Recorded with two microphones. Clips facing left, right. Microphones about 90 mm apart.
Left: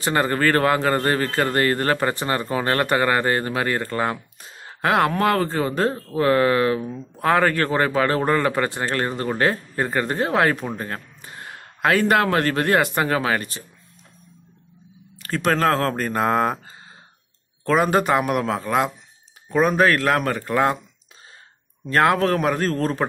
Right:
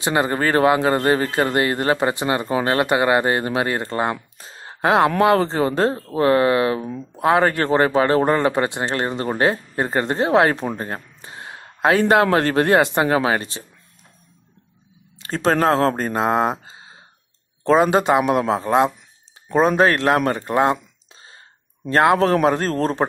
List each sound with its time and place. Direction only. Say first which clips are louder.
0.0 s speech: right 1 dB; 15° right (ahead or behind)
15.1 s speech: right 2 dB; 25° right (ahead or behind)
21.9 s speech: right 3 dB; 25° right (ahead or behind)